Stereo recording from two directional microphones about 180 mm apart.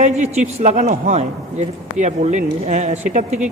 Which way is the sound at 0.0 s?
40° right (ahead or behind).